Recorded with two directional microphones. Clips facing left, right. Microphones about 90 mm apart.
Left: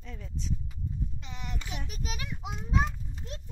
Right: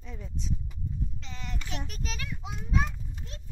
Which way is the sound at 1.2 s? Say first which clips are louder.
Even; 15° left (ahead or behind).